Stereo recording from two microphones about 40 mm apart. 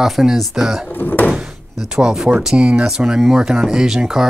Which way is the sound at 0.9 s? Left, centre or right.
Left.